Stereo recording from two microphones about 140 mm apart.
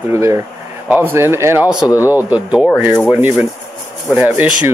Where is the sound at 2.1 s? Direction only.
10° right (ahead or behind).